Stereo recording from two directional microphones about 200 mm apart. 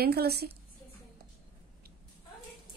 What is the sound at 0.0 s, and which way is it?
Speech, 50° right (ahead or behind).